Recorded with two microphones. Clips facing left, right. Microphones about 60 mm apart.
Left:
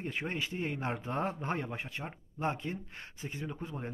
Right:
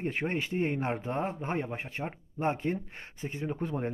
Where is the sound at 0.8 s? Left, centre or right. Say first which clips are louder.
Right 4 dB; right.